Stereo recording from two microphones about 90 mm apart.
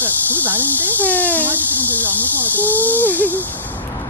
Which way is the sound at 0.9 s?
20° left (ahead or behind).